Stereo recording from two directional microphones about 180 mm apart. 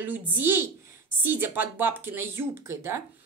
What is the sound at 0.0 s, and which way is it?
Speech, 10° right (ahead or behind).